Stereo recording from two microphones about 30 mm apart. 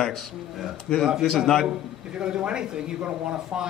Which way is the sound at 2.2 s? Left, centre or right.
Right.